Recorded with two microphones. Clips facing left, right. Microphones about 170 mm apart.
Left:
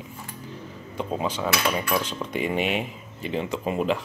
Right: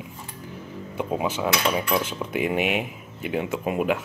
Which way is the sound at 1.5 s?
20° right (ahead or behind).